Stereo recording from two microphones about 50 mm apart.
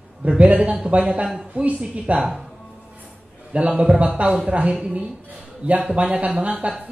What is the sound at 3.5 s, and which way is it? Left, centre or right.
A woman's voice, right.